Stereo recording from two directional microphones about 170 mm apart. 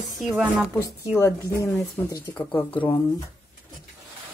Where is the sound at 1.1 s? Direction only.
15° left (ahead or behind).